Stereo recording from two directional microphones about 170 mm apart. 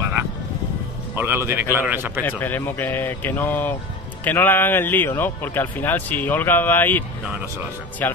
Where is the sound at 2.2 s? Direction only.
10° left (ahead or behind).